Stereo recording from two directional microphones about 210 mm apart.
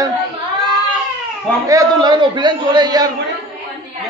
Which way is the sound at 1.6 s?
15° right (ahead or behind).